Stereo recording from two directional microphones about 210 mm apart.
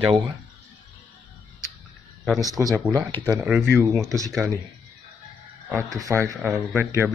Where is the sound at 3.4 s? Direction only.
Centre (ahead or behind).